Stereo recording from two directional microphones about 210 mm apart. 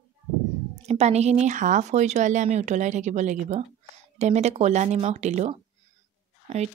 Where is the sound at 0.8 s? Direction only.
30° right (ahead or behind).